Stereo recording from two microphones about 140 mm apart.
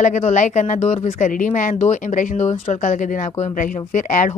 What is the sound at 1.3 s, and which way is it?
Speech, 70° left (ahead or behind).